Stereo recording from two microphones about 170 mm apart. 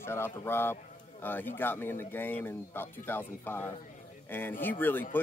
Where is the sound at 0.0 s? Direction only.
15° left (ahead or behind).